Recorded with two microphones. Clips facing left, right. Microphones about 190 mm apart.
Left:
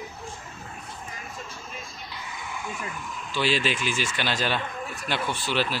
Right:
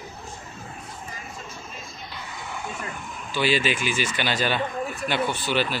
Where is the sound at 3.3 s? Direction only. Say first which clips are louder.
Right 2 dB; centre (ahead or behind).